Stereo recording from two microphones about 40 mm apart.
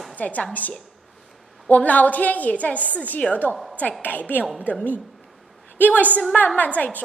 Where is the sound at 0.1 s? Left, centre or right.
Left.